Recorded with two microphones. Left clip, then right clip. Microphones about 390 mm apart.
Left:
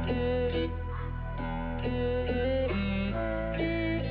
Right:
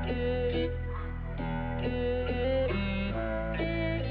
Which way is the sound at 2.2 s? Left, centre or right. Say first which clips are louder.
Even; right.